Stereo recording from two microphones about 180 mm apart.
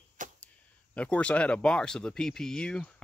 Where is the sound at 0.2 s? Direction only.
45° right (ahead or behind).